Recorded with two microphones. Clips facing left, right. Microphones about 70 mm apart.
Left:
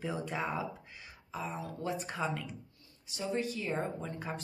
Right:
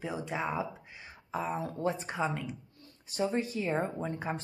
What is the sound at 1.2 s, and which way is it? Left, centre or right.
Speech, right.